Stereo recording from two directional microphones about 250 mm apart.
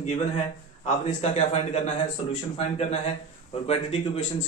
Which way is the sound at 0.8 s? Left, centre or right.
Left.